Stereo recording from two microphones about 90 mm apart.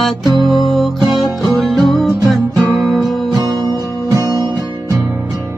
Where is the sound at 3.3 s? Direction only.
50° right (ahead or behind).